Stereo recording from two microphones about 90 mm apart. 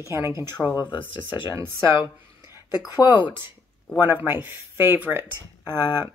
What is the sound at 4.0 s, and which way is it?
A woman's voice, 25° right (ahead or behind).